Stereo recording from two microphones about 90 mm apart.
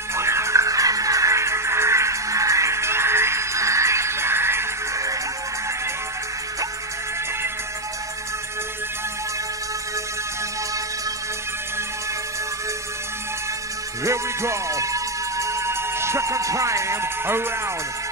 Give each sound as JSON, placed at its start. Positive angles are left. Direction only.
{"t": 0.1, "sound": "music", "side_deg": -30}
{"t": 14.0, "sound": "music", "side_deg": -30}